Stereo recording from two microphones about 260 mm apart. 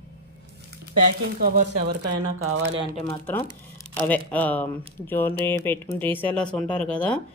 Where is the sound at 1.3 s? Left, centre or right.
Right.